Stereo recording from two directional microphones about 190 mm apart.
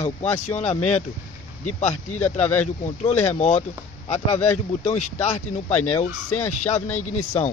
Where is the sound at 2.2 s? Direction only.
10° left (ahead or behind).